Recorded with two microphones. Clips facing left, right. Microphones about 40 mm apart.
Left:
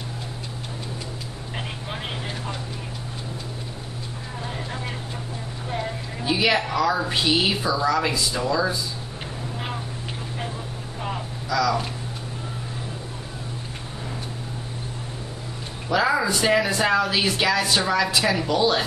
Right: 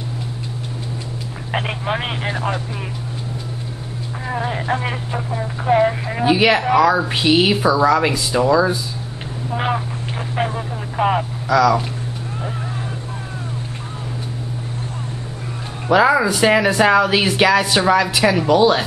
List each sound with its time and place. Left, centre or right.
1.5 s speech: right
4.3 s speech: right
10.3 s speech: right
15.9 s speech: right